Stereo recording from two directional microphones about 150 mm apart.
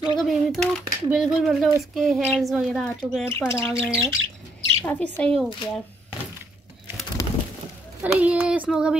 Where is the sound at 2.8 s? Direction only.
10° left (ahead or behind).